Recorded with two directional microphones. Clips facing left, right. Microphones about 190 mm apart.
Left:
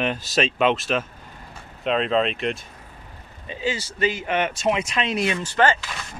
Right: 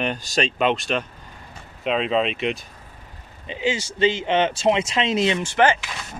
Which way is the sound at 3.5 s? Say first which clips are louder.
Right 3 dB; 20° right (ahead or behind).